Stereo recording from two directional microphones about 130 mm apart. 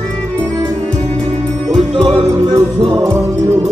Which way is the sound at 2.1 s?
35° right (ahead or behind).